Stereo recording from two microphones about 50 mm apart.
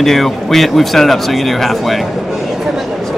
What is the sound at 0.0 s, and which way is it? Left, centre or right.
Speech, centre.